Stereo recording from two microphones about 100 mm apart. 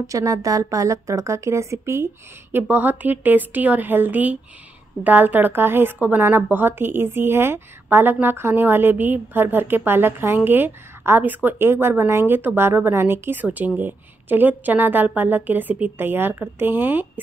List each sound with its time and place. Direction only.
0.0 s a woman's voice: 35° right (ahead or behind)
2.5 s a woman's voice: 15° right (ahead or behind)